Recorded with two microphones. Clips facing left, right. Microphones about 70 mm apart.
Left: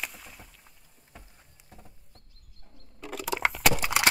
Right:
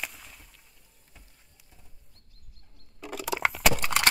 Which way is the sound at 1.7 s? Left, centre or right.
Left.